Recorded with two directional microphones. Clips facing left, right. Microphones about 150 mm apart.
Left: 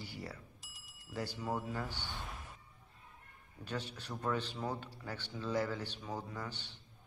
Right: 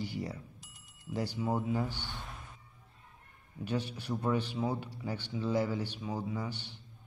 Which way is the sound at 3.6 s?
10° right (ahead or behind).